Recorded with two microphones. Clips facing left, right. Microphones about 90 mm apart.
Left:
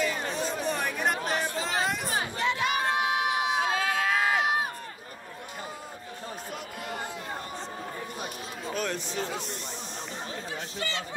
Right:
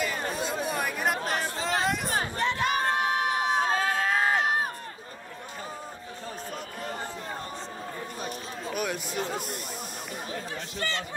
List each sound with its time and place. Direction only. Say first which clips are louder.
0.0 s chatter: left 1 dB; 45° right (ahead or behind)
0.7 s chatter: left 1 dB; 5° right (ahead or behind)
1.5 s hubbub: right 1 dB; 35° right (ahead or behind)
2.0 s crowd: right 1 dB; 40° right (ahead or behind)
8.7 s a sound: right 1 dB; 10° right (ahead or behind)
9.2 s speech: right 1 dB; 40° right (ahead or behind)
10.8 s speech: right 3 dB; 45° right (ahead or behind)